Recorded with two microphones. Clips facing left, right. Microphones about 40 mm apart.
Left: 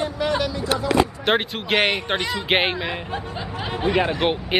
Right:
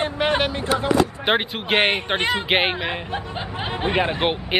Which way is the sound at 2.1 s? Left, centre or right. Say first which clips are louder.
Right 3 dB; right.